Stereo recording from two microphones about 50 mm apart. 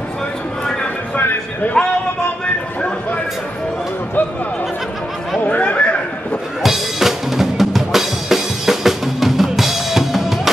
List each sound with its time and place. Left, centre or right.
1.1 s music: left
5.4 s chatter: left
6.6 s drum: centre